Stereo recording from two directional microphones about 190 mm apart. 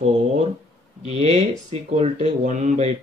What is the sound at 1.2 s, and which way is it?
Speech, 35° right (ahead or behind).